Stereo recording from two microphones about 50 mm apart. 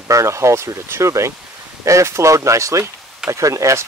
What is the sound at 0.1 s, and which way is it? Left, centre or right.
Speech, right.